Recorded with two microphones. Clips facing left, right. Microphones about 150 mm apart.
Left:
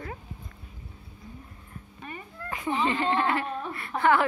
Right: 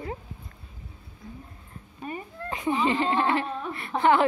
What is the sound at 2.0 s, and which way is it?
A woman's voice, 30° right (ahead or behind).